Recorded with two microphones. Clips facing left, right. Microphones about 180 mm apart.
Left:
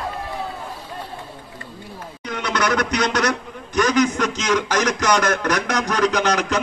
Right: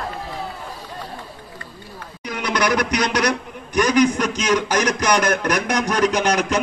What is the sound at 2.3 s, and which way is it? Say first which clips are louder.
A man's voice: right 1 dB; 10° right (ahead or behind).